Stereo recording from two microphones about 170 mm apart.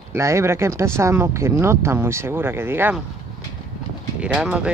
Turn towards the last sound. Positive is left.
turn(degrees=-5)  # may be behind; listen again after turning